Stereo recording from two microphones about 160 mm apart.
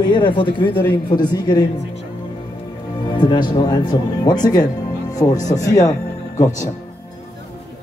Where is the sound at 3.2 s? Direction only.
30° left (ahead or behind).